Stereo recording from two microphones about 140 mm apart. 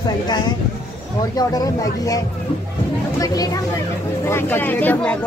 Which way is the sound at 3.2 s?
25° left (ahead or behind).